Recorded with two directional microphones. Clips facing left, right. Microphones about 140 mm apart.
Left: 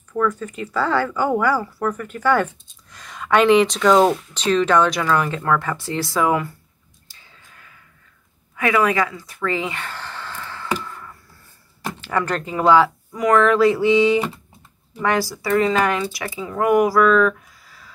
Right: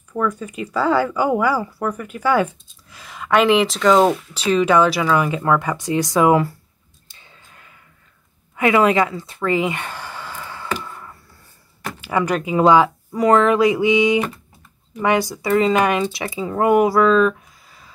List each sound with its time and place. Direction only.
0.1 s speech: 10° right (ahead or behind)
8.5 s speech: 25° right (ahead or behind)
10.8 s a sound: 20° right (ahead or behind)
12.0 s speech: 10° right (ahead or behind)
13.1 s speech: 30° right (ahead or behind)
13.4 s speech: 15° right (ahead or behind)